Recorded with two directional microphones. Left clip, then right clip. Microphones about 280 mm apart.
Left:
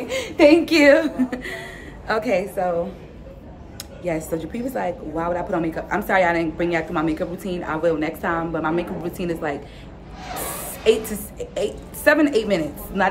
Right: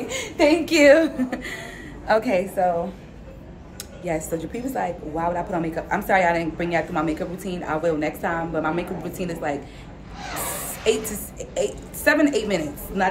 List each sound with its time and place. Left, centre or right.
0.1 s a woman's voice: centre
4.0 s a woman's voice: centre
10.8 s a woman's voice: centre